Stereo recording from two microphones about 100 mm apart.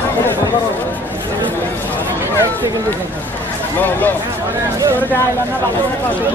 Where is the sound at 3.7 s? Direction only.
20° left (ahead or behind).